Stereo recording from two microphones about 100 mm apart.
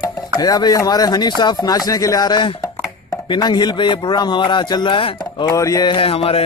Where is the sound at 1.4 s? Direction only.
45° left (ahead or behind).